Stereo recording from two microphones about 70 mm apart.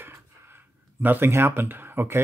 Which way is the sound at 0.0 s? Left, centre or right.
Right.